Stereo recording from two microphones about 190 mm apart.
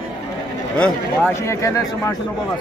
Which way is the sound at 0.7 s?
5° left (ahead or behind).